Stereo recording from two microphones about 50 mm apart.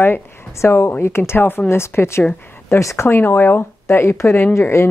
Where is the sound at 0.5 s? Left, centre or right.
Left.